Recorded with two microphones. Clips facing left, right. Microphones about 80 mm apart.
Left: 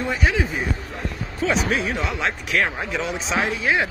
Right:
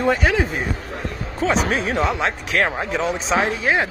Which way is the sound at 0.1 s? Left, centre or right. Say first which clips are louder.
Right 3 dB; right.